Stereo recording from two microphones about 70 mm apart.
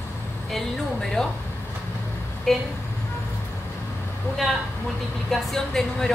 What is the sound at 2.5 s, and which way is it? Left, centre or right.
Speech, centre.